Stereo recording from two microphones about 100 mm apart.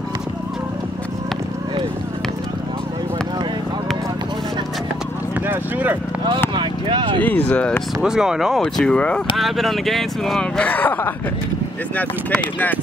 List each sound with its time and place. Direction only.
5.5 s a sound: 15° right (ahead or behind)
6.5 s vehicle: 55° right (ahead or behind)
7.2 s speech: 15° left (ahead or behind)
8.0 s speech: 5° right (ahead or behind); by 9.2 s 10° left (ahead or behind)
9.4 s speech: centre (ahead or behind)
10.6 s speech: 15° left (ahead or behind)